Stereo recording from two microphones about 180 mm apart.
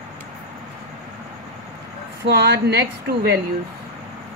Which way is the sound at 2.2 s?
65° right (ahead or behind).